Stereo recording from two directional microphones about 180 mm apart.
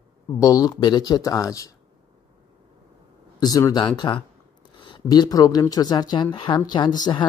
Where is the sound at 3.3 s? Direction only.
20° left (ahead or behind).